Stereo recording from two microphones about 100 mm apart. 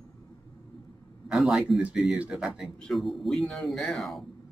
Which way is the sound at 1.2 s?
5° right (ahead or behind).